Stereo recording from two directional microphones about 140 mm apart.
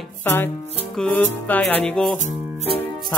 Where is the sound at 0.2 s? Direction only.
15° left (ahead or behind).